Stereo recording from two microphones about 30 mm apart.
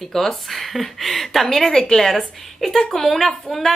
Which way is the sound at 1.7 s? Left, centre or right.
Left.